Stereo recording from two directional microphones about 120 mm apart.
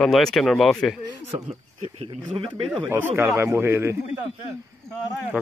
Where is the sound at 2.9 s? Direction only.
15° right (ahead or behind).